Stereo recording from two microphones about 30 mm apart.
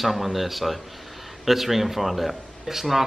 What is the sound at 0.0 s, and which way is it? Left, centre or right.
Speech, centre.